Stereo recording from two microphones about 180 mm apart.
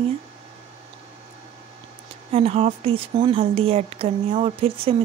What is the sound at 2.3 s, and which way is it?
Speech, 35° right (ahead or behind).